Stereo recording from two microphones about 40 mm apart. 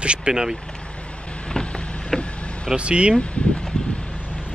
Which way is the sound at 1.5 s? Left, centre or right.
Left.